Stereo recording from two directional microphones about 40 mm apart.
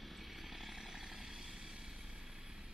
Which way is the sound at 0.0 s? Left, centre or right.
Centre.